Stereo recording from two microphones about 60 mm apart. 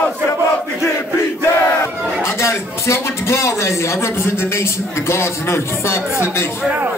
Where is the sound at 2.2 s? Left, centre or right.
Left.